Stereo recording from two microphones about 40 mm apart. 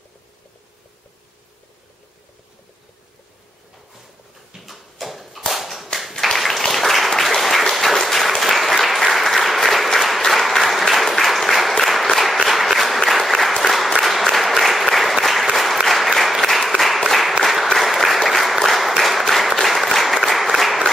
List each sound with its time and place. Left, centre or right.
4.6 s a sound: centre
5.5 s whip: centre
5.9 s applause: centre